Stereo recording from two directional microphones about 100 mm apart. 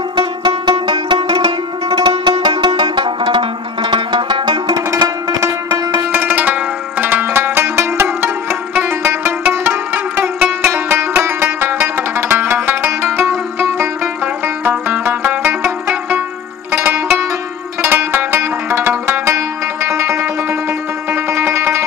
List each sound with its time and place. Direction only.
0.1 s music: 55° right (ahead or behind)
4.9 s music: 30° right (ahead or behind)
5.7 s music: 45° right (ahead or behind)
6.1 s music: 20° right (ahead or behind)